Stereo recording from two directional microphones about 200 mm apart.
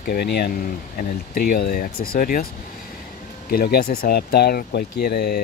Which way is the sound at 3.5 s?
50° left (ahead or behind).